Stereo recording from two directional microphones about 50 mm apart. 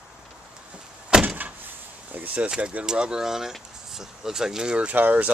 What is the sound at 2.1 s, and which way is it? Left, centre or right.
Speech, right.